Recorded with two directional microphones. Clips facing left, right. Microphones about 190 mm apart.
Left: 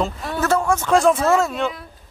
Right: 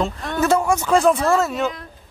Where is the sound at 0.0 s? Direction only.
5° left (ahead or behind).